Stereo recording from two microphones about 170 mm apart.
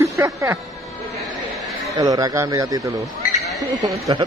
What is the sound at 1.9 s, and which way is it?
Speech, 20° right (ahead or behind).